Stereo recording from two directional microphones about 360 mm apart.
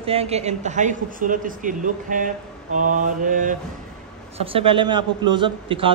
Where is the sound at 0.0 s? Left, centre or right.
Centre.